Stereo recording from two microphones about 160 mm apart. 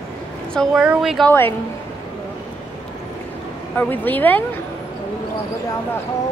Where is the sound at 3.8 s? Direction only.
10° left (ahead or behind).